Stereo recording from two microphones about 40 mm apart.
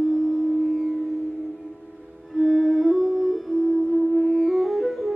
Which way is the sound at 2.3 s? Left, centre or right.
Centre.